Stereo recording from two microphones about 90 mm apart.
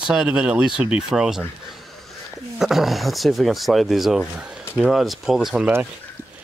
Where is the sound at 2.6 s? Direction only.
5° right (ahead or behind).